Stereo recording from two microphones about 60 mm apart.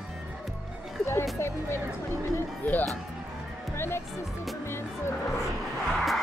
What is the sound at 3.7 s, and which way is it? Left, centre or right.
Speech, left.